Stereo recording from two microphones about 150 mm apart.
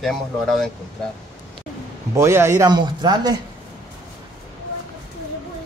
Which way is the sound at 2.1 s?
15° right (ahead or behind).